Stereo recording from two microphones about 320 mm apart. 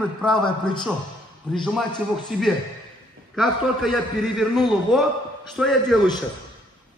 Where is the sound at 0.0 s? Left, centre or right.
Centre.